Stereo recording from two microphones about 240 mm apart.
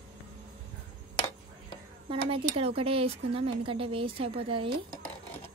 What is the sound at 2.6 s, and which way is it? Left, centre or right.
A woman's voice, right.